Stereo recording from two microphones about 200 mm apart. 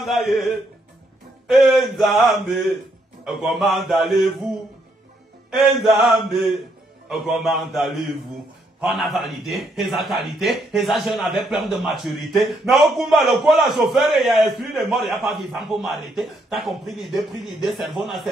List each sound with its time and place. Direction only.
0.3 s a man's voice: centre (ahead or behind)
5.5 s a man's voice: centre (ahead or behind)